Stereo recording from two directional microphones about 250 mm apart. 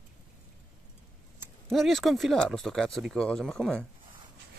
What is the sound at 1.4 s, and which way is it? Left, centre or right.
Speech, centre.